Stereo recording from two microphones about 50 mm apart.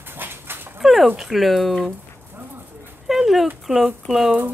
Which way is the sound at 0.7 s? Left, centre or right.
Centre.